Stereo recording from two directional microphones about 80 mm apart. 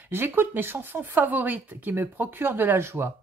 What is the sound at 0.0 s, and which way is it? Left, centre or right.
Speech, right.